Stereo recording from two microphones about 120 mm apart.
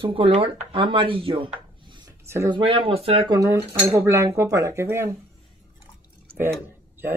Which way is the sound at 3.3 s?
25° right (ahead or behind).